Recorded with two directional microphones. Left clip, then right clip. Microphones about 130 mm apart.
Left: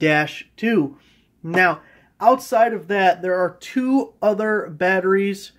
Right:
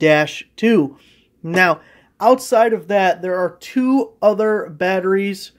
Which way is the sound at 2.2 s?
70° right (ahead or behind).